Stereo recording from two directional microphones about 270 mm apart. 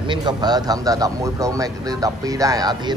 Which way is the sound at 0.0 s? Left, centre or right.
Centre.